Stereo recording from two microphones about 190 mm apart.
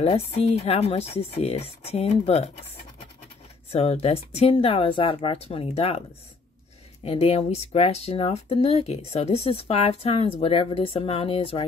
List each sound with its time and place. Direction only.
0.0 s speech: 35° left (ahead or behind)
3.7 s speech: 35° left (ahead or behind)
7.1 s speech: 30° left (ahead or behind)